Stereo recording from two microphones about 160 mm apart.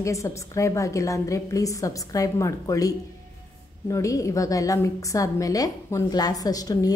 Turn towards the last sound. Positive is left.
turn(degrees=25)  # may be behind; listen again after turning